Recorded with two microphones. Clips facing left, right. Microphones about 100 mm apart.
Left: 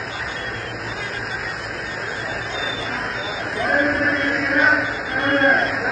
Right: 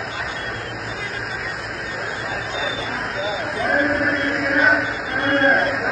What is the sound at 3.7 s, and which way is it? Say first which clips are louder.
Chant: even; 30° right (ahead or behind).